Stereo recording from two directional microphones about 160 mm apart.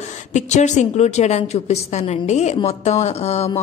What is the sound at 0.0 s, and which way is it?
A woman's voice, 45° left (ahead or behind).